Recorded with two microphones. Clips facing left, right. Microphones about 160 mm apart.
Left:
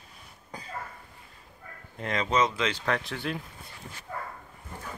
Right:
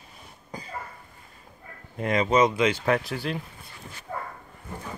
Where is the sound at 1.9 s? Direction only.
15° right (ahead or behind).